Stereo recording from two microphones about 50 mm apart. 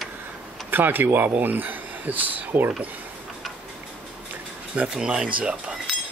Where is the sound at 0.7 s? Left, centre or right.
Right.